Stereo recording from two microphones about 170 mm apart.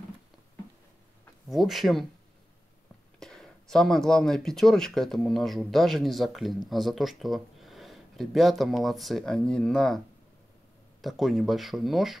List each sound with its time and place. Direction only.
1.5 s speech: centre (ahead or behind)
3.2 s speech: 5° left (ahead or behind)